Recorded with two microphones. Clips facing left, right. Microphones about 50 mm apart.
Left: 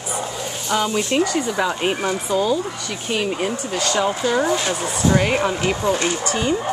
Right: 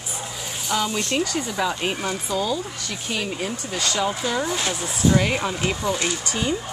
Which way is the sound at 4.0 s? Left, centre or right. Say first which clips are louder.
Left 5 dB; centre.